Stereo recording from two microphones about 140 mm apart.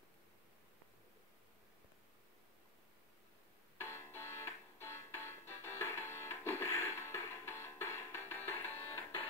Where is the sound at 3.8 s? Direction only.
15° left (ahead or behind).